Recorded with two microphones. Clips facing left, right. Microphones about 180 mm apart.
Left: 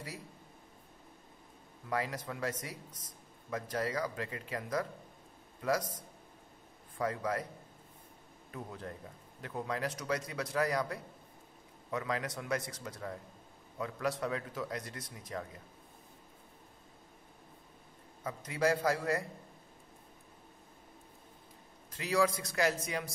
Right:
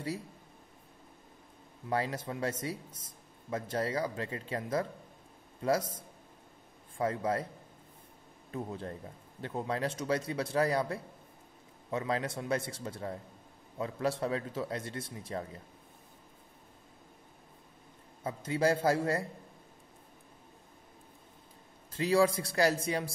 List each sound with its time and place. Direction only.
1.9 s a man's voice: 30° right (ahead or behind)
8.5 s a man's voice: 30° right (ahead or behind)
18.2 s a man's voice: 30° right (ahead or behind)
21.9 s speech: 30° right (ahead or behind)